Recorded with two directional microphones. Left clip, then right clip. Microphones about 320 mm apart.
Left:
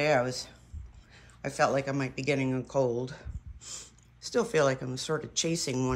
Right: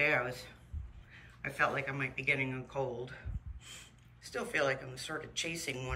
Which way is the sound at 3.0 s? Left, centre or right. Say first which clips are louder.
Left 6 dB; centre.